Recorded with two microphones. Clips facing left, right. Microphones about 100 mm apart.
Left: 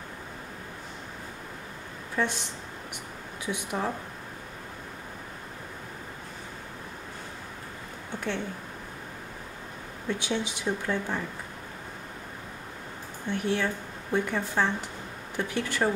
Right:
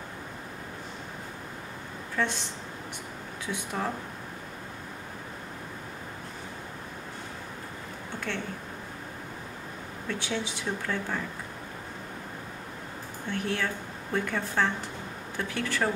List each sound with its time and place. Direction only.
2.1 s speech: 15° left (ahead or behind)
3.4 s speech: 15° left (ahead or behind)
10.0 s speech: 15° left (ahead or behind)
13.3 s speech: 20° left (ahead or behind)